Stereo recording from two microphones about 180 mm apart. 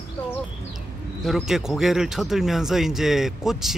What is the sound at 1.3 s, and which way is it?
Speech, centre (ahead or behind).